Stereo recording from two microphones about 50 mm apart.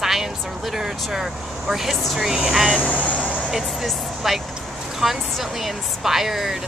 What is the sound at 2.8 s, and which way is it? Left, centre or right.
Speech, left.